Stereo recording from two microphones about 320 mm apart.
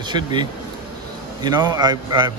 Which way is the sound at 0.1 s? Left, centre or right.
Centre.